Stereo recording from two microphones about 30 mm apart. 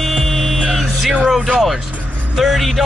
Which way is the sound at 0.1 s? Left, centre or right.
Centre.